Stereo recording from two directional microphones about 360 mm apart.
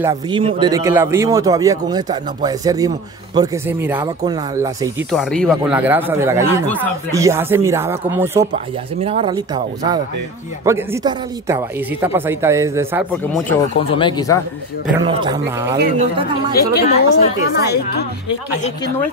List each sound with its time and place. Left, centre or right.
0.0 s speech: centre
10.6 s speech: centre
13.7 s speech: centre
15.0 s speech: centre
15.8 s speech: centre
16.5 s speech: left